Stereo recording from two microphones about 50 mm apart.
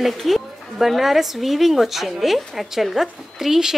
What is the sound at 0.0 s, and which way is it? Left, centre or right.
A woman's voice, centre.